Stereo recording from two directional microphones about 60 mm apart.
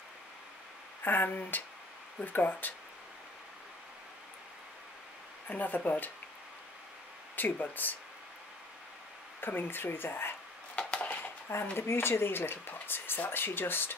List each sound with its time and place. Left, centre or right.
1.0 s speech: left
5.5 s speech: left
7.3 s speech: left
9.4 s speech: left
10.8 s a sound: centre
11.7 s speech: left